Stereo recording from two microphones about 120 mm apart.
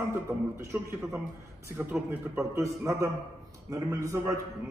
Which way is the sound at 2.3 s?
25° right (ahead or behind).